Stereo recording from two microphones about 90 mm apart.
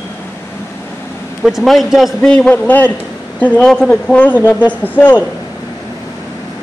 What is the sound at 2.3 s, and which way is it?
A man's voice, 15° left (ahead or behind).